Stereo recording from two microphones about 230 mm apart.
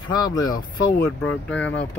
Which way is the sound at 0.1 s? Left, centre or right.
Centre.